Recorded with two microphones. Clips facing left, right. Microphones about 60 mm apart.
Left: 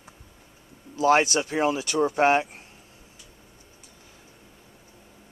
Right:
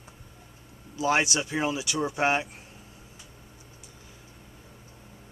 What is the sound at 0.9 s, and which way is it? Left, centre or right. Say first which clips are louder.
Speech: left 5 dB; left.